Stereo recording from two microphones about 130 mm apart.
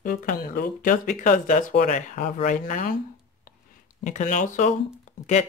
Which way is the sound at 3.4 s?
85° left.